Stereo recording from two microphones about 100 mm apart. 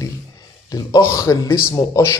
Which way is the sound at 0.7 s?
40° left (ahead or behind).